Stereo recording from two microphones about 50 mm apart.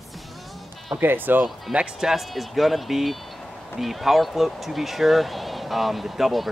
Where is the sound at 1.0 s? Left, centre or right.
Right.